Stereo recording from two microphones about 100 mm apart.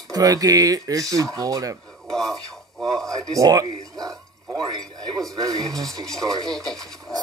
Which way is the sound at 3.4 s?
40° right (ahead or behind).